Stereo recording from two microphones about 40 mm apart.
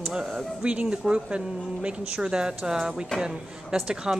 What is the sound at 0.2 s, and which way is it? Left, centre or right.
Speech, centre.